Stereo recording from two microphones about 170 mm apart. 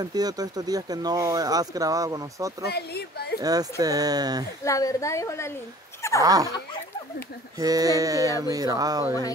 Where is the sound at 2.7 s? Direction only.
70° left (ahead or behind).